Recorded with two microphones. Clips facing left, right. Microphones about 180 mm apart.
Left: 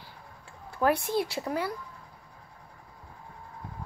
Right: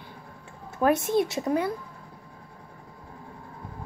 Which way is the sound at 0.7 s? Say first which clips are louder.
Right 3 dB; 20° right (ahead or behind).